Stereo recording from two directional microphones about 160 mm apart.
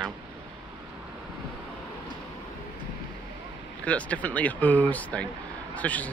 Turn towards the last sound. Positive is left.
turn(degrees=10)  # may be behind; listen again after turning